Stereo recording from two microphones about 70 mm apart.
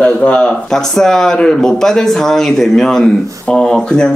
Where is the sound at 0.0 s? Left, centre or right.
Centre.